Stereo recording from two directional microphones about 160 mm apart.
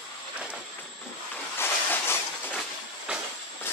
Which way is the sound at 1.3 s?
15° left (ahead or behind).